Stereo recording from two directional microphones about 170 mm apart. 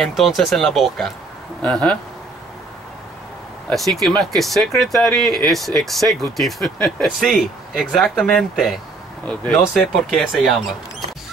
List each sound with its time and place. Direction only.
0.0 s speech: centre (ahead or behind)
3.6 s speech: centre (ahead or behind)